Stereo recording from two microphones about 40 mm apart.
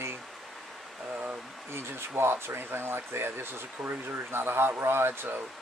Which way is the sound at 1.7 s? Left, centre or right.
Right.